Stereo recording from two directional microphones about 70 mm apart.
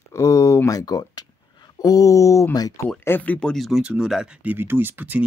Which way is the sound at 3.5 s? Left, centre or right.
Centre.